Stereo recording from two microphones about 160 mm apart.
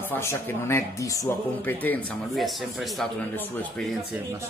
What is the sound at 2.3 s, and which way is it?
Speech, centre (ahead or behind).